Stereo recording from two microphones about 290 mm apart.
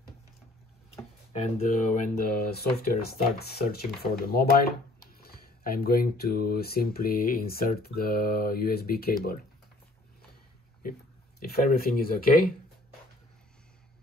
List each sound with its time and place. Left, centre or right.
1.4 s speech: left
10.8 s speech: left